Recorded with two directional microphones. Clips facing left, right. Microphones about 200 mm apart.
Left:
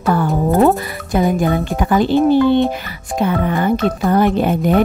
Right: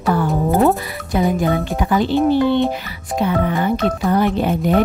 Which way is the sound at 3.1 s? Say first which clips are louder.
Left 1 dB; 50° left (ahead or behind).